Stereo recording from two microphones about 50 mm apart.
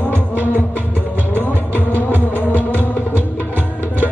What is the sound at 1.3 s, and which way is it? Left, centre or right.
Music, left.